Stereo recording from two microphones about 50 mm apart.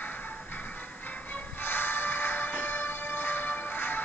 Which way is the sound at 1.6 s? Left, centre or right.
Left.